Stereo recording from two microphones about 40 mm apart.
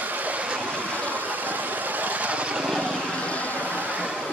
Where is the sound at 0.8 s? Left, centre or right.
Right.